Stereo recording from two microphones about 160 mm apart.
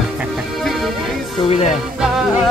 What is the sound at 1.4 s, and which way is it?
Speech, 40° left (ahead or behind).